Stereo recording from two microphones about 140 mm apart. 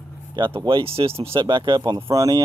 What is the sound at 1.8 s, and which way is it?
Speech, 25° right (ahead or behind).